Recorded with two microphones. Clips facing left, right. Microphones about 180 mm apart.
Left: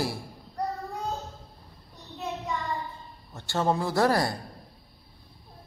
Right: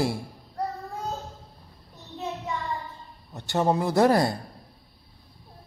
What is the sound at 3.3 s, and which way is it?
A man's voice, 20° right (ahead or behind).